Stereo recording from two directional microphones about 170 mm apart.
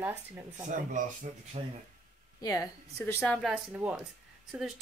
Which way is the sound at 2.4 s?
20° left (ahead or behind).